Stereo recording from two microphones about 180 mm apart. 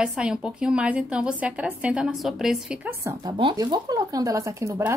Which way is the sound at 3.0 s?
25° right (ahead or behind).